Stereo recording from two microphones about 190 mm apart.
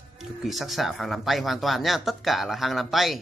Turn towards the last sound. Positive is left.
turn(degrees=0)  # may be behind; listen again after turning